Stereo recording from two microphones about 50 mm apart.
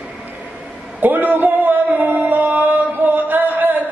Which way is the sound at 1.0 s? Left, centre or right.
Right.